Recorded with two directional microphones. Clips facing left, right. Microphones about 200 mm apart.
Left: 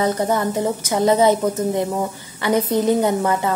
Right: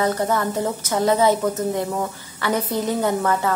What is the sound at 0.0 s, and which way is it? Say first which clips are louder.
A woman's voice: left 2 dB; 20° left (ahead or behind).